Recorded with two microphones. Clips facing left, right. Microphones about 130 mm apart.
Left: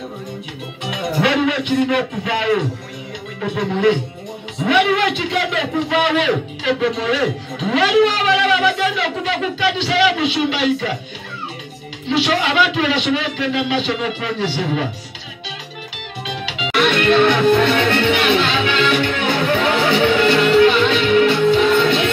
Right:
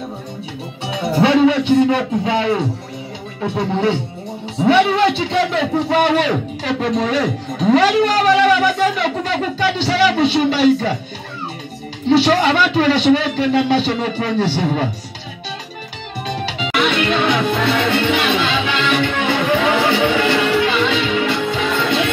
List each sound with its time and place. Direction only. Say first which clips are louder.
0.8 s a man's voice: right 3 dB; 30° right (ahead or behind)
12.1 s a man's voice: right 5 dB; 40° right (ahead or behind)
16.3 s music: right 4 dB; 40° right (ahead or behind)
16.7 s music: left 3 dB; 15° right (ahead or behind)